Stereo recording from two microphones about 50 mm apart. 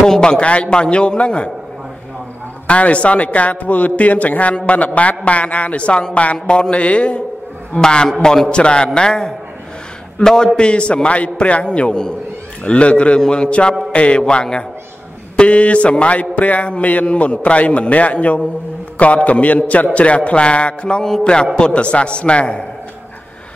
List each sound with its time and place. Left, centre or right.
0.0 s a man's voice: centre
2.6 s a man's voice: left